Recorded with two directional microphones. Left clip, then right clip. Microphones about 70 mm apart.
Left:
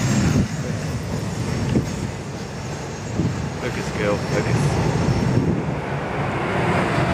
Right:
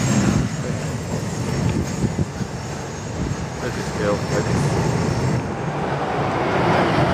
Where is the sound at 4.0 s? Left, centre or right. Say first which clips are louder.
Even; centre.